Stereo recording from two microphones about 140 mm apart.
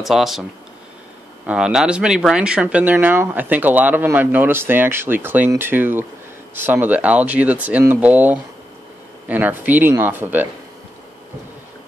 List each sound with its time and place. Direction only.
0.0 s speech: centre (ahead or behind)
1.5 s speech: 5° right (ahead or behind)